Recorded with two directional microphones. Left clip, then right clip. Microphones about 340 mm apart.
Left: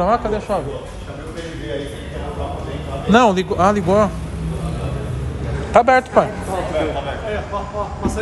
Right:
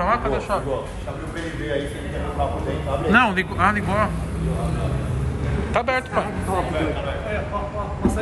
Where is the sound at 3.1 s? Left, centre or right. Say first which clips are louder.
Left 5 dB; centre.